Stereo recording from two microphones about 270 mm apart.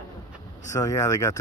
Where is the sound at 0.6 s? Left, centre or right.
Centre.